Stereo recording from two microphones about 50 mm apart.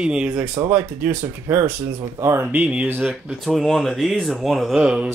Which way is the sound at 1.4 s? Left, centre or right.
Right.